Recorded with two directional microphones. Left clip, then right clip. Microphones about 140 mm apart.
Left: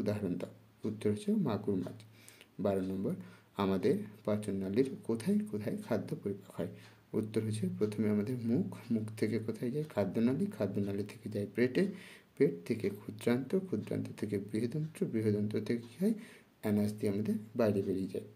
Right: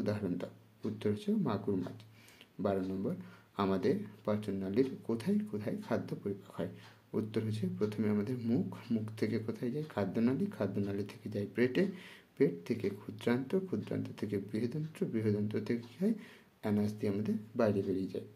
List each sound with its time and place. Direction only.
0.0 s speech: 20° left (ahead or behind)